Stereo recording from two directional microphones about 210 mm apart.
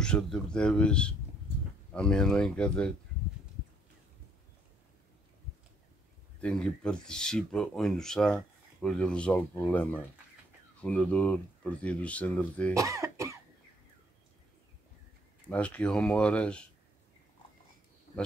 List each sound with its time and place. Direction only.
0.0 s speech: 5° left (ahead or behind)
6.4 s speech: 5° left (ahead or behind)
12.7 s cough: 15° right (ahead or behind)
15.5 s speech: 5° left (ahead or behind)